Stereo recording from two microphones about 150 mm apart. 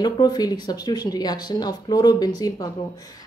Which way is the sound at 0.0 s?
25° left (ahead or behind).